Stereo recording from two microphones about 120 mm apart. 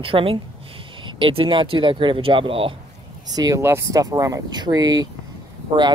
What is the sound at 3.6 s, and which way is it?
Speech, 20° right (ahead or behind).